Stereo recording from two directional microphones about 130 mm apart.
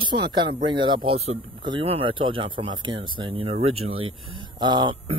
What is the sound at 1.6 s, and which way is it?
Speech, 40° right (ahead or behind).